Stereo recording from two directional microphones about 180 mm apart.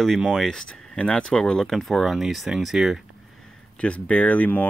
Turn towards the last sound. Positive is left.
turn(degrees=10)  # may be behind; listen again after turning